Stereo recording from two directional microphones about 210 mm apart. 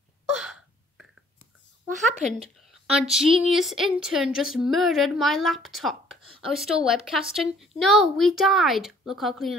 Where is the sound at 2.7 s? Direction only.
Centre (ahead or behind).